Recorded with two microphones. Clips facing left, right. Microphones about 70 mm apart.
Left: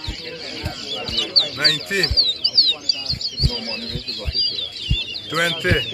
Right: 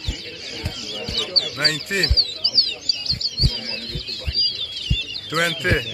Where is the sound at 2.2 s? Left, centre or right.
Centre.